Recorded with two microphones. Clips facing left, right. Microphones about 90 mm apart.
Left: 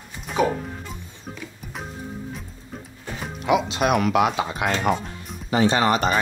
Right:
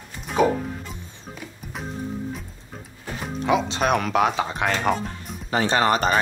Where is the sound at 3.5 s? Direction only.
35° right (ahead or behind).